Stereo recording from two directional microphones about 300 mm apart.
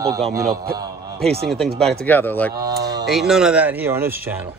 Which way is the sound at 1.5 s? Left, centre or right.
Centre.